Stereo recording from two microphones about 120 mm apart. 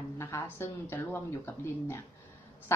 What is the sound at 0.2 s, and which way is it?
A woman's voice, 20° left (ahead or behind).